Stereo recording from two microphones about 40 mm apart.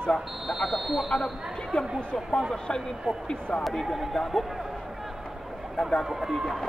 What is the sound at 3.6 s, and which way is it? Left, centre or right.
Speech, centre.